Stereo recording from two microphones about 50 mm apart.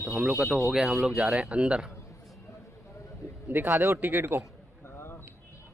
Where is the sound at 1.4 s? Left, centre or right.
Right.